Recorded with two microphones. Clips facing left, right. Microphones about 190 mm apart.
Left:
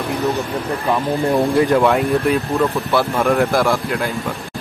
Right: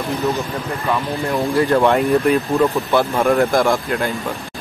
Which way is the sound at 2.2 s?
Centre (ahead or behind).